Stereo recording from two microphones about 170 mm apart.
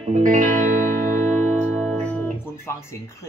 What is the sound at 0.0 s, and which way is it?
Music, 45° right (ahead or behind).